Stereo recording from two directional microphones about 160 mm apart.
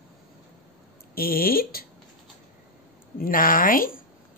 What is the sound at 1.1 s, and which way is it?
Speech, 70° left (ahead or behind).